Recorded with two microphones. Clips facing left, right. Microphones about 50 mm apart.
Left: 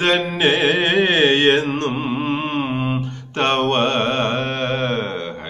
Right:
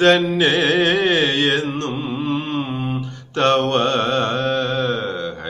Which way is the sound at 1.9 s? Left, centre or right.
Left.